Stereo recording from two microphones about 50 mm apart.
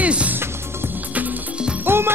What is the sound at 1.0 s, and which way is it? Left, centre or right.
Music, right.